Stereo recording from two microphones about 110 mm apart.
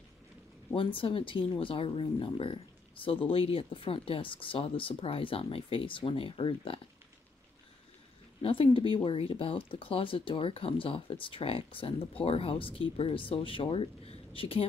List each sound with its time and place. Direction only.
0.7 s speech: 55° left (ahead or behind)
8.4 s speech: 55° left (ahead or behind)